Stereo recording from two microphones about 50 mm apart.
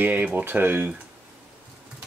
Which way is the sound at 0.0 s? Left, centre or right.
Right.